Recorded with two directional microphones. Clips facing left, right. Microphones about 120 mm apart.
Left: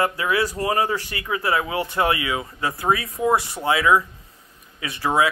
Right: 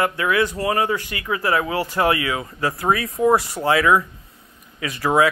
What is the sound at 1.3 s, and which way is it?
Speech, 25° left (ahead or behind).